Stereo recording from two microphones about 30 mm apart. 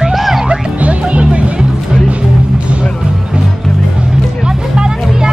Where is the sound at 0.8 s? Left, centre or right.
Right.